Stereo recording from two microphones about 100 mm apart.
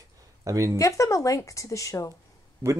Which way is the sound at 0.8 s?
35° left (ahead or behind).